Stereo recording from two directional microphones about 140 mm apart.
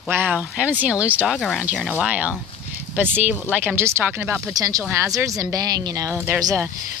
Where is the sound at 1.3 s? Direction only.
5° left (ahead or behind).